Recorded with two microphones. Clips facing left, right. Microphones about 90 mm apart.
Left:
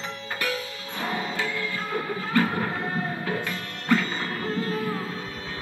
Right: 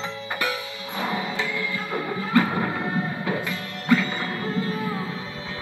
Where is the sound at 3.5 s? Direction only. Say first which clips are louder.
Right 3 dB; 40° left (ahead or behind).